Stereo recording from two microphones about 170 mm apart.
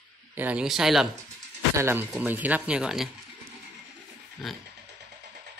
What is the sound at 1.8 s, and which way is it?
A man's voice, 15° right (ahead or behind).